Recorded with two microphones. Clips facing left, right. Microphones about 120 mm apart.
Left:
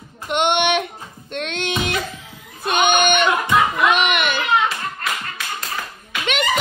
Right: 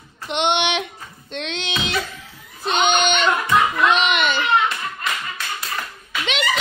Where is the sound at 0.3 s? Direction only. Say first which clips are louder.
Left 2 dB; 50° left (ahead or behind).